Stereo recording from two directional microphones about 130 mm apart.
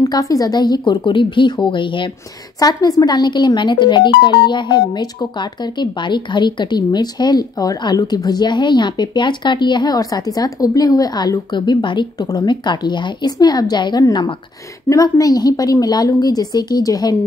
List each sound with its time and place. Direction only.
0.0 s a woman's voice: 25° left (ahead or behind)